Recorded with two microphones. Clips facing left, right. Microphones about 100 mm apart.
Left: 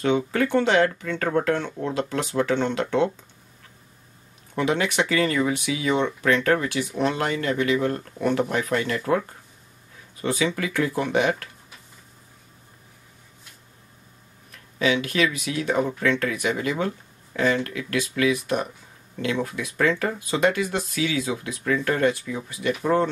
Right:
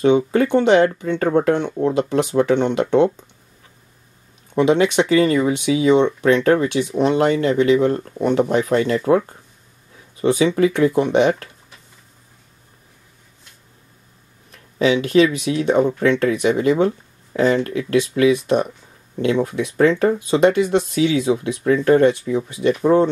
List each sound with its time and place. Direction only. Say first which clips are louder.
0.0 s speech: right 7 dB; 20° right (ahead or behind)
4.6 s speech: right 8 dB; 20° right (ahead or behind)
10.2 s speech: right 9 dB; 20° right (ahead or behind)
14.8 s speech: right 8 dB; 25° right (ahead or behind)